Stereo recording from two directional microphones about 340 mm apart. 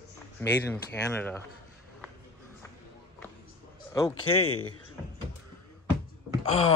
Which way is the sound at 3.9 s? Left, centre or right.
Centre.